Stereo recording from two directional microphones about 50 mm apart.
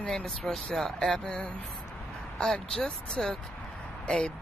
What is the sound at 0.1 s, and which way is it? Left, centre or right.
Speech, centre.